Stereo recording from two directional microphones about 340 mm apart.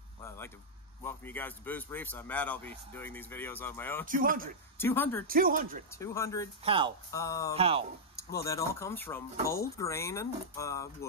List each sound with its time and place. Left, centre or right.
1.0 s speech: centre
4.0 s speech: right
4.7 s speech: centre
5.2 s speech: right
5.9 s speech: centre
6.6 s speech: centre
7.1 s speech: centre
7.5 s speech: centre
8.4 s speech: centre